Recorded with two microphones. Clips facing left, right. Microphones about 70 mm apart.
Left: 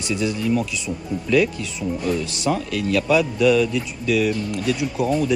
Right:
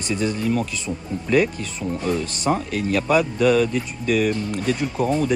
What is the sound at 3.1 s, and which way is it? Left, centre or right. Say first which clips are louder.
Speech: even; right.